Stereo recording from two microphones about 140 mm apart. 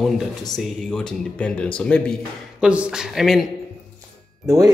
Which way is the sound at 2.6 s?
10° right (ahead or behind).